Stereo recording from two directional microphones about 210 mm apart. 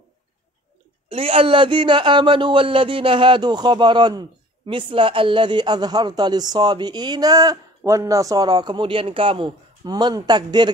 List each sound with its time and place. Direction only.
1.0 s speech: 25° right (ahead or behind)